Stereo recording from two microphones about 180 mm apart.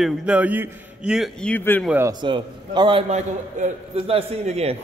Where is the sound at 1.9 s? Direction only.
15° right (ahead or behind).